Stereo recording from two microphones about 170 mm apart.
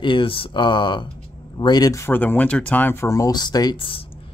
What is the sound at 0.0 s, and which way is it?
Speech, 30° left (ahead or behind).